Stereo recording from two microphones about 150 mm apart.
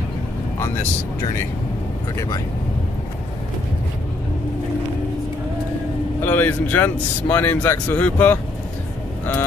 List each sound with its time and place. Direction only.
2.1 s speech: 20° left (ahead or behind)
6.2 s speech: 15° left (ahead or behind)